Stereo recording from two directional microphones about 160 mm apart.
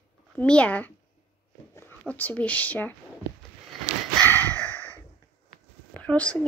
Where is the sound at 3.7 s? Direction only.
Centre (ahead or behind).